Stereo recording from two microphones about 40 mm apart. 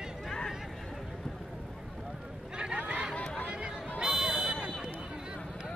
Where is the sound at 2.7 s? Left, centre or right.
Right.